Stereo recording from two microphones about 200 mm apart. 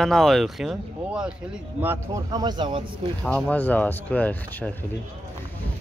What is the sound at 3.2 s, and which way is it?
Speech, 5° left (ahead or behind).